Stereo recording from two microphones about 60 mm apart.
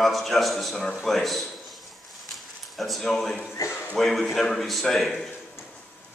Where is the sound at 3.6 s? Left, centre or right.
Left.